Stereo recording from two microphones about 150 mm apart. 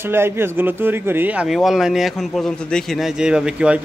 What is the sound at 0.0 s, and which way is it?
Speech, 15° right (ahead or behind).